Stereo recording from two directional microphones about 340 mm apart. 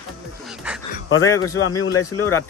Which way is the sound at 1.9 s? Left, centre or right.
Left.